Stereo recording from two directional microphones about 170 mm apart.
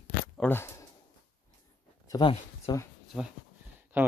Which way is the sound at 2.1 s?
30° left (ahead or behind).